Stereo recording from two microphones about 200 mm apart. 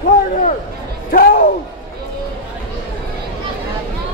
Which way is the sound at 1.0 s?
45° left (ahead or behind).